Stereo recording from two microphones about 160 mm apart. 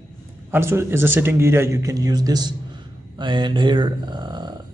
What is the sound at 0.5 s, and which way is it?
A man's voice, 15° right (ahead or behind).